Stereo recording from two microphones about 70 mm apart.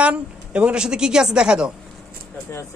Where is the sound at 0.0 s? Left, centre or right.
Centre.